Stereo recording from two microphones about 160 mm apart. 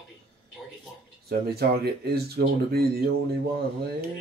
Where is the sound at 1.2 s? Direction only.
80° right.